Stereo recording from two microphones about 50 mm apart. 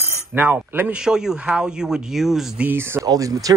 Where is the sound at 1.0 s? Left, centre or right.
Centre.